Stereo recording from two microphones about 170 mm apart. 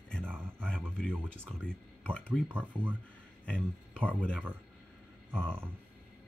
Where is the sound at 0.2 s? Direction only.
10° right (ahead or behind).